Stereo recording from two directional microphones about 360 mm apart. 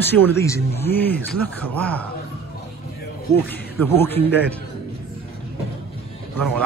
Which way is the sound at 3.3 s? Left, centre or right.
Centre.